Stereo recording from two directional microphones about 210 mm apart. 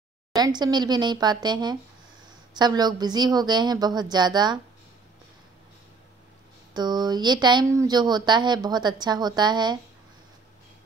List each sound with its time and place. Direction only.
0.4 s speech: 20° right (ahead or behind)
6.7 s speech: 20° right (ahead or behind)